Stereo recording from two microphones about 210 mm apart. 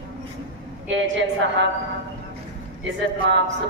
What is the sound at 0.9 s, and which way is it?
Speech, 60° right (ahead or behind).